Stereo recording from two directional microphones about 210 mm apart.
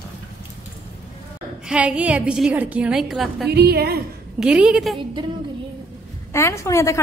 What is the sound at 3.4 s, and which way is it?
Speech, 50° right (ahead or behind).